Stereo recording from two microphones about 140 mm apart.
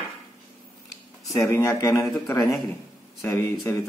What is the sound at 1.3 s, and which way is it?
Speech, 20° left (ahead or behind).